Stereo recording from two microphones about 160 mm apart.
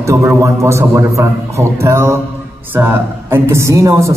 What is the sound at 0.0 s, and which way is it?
A woman's voice, 20° right (ahead or behind).